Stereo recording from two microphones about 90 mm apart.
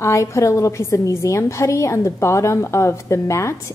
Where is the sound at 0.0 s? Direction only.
35° left (ahead or behind).